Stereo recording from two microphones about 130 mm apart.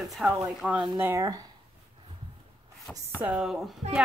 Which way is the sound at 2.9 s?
5° left (ahead or behind).